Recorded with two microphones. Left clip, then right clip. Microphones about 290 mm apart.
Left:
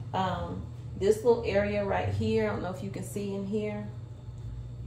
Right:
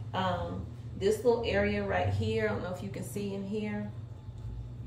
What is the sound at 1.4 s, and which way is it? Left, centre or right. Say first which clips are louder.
Speech: left 2 dB; centre.